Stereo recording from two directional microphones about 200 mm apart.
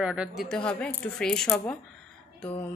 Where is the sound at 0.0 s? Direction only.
5° right (ahead or behind).